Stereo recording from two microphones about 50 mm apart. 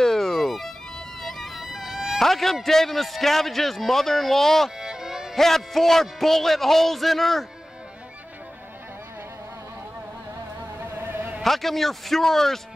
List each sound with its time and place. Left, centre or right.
0.0 s music: centre
1.6 s dog: centre
2.1 s a man's voice: centre
4.7 s music: centre
5.4 s a man's voice: centre
11.0 s a sound: right
11.4 s a man's voice: centre